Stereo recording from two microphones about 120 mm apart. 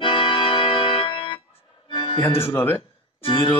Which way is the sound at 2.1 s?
20° left (ahead or behind).